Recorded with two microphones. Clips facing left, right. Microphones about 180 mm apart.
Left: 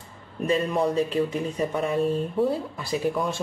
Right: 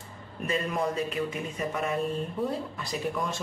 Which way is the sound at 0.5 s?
35° left (ahead or behind).